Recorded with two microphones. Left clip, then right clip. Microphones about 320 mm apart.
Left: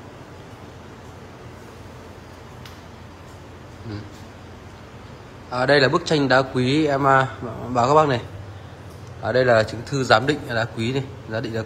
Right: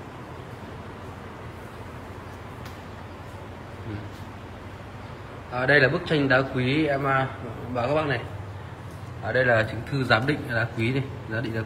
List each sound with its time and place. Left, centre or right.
5.5 s speech: centre
6.9 s speech: left
7.7 s speech: centre
9.3 s speech: centre